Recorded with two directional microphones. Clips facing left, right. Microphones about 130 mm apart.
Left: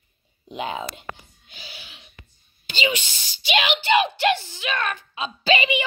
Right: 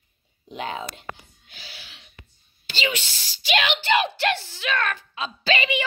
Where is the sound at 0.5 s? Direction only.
10° left (ahead or behind).